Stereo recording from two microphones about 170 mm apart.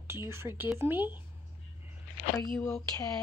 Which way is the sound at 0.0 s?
15° right (ahead or behind).